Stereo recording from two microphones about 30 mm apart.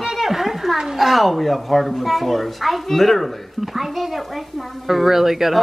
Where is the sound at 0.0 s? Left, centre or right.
Centre.